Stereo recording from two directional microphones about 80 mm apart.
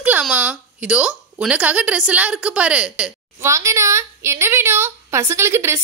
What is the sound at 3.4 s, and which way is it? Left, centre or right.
A woman's voice, right.